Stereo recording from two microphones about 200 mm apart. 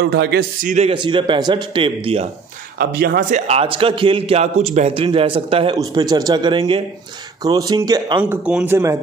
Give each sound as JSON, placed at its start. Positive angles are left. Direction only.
{"t": 0.0, "sound": "a man's voice", "side_deg": -60}
{"t": 0.7, "sound": "a man's voice", "side_deg": -30}
{"t": 2.8, "sound": "a man's voice", "side_deg": -50}
{"t": 8.2, "sound": "a man's voice", "side_deg": -5}